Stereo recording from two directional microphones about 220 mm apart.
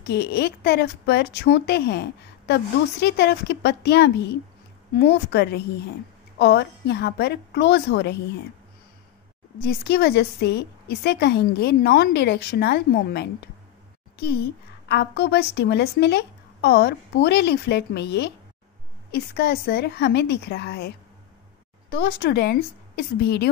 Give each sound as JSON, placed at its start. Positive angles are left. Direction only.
{"t": 0.0, "sound": "speech", "side_deg": 45}
{"t": 9.6, "sound": "a woman's voice", "side_deg": 45}
{"t": 21.9, "sound": "speech", "side_deg": 50}